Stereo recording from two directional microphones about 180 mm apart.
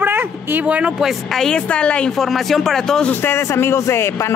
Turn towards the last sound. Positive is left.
turn(degrees=15)  # may be behind; listen again after turning